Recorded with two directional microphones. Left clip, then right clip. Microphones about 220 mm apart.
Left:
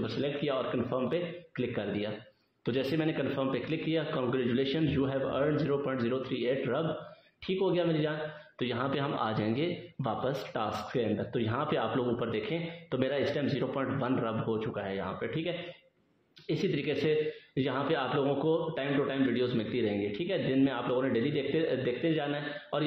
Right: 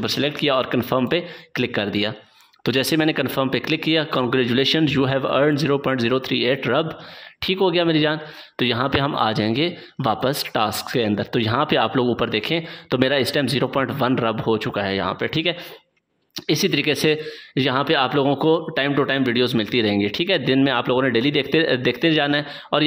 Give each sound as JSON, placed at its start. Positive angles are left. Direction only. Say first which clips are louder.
{"t": 0.0, "sound": "speech", "louder": "right 11 dB", "side_deg": -40}